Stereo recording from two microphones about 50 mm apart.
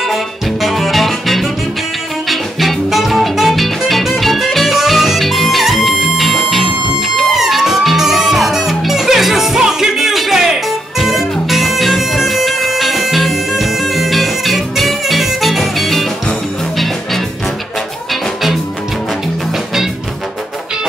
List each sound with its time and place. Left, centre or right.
0.1 s music: centre